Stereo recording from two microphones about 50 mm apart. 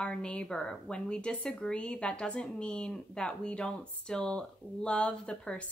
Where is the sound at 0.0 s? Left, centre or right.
Centre.